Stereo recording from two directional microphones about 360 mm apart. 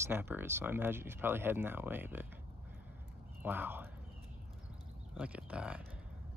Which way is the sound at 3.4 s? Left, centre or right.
Centre.